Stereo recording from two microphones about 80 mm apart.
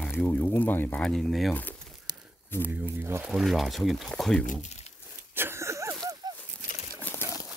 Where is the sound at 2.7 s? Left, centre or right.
Right.